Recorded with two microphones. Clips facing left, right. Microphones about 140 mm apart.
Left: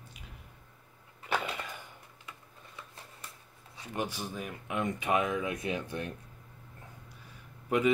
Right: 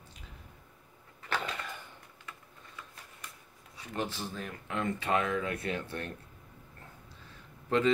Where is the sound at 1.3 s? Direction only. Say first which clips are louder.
Left 2 dB; 10° left (ahead or behind).